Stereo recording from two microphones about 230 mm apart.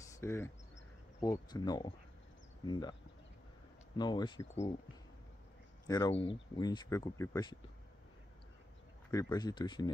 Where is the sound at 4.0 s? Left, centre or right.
Centre.